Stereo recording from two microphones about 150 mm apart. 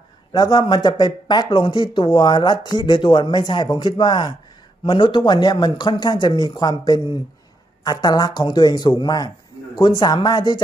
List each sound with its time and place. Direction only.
0.3 s speech: 30° left (ahead or behind)